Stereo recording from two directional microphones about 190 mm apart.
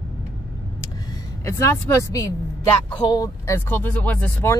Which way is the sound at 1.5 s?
15° left (ahead or behind).